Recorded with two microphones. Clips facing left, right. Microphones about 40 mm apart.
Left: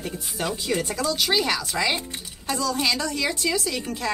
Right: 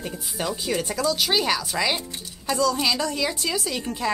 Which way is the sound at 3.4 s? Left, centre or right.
Centre.